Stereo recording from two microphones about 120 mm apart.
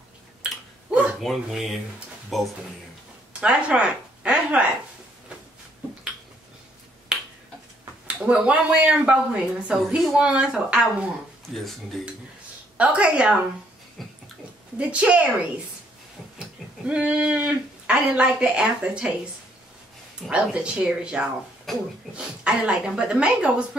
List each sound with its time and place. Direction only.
0.4 s a sound: 10° right (ahead or behind)
1.2 s speech: centre (ahead or behind)
7.1 s finger snapping: 5° right (ahead or behind)
8.1 s speech: 10° right (ahead or behind)
12.7 s speech: 10° right (ahead or behind)
14.0 s a sound: centre (ahead or behind)
14.8 s speech: 10° right (ahead or behind)
16.3 s speech: 10° right (ahead or behind)
20.2 s speech: 10° right (ahead or behind)